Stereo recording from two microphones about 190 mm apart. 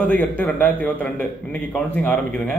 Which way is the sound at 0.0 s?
10° left (ahead or behind).